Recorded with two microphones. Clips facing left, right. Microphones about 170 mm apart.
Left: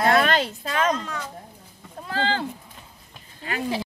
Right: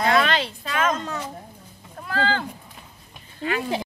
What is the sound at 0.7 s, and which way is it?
Speech, 35° left (ahead or behind).